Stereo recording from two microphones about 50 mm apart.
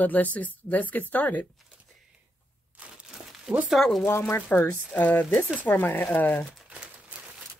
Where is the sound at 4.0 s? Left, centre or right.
Left.